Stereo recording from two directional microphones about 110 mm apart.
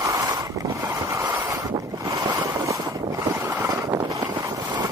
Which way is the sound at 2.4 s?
30° right (ahead or behind).